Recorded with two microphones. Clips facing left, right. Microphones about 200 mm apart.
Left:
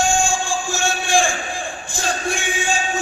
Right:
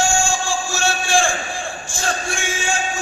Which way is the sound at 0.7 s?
15° left (ahead or behind).